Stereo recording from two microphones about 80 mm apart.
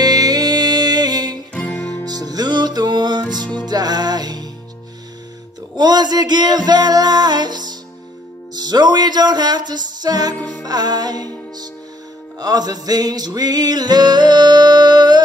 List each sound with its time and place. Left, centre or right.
0.0 s music: right
1.5 s music: centre
2.0 s music: right
5.8 s music: right